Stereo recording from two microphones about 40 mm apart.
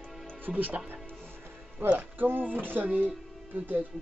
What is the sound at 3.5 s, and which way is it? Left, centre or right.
Speech, right.